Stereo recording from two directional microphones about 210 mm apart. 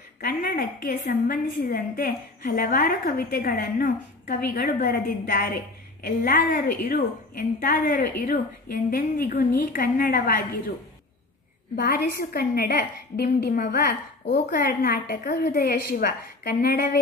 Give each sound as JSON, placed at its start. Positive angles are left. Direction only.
{"t": 0.2, "sound": "a woman's voice", "side_deg": 45}
{"t": 11.7, "sound": "a woman's voice", "side_deg": 45}